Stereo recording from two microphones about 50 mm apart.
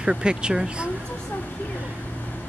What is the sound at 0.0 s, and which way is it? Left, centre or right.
Speech, centre.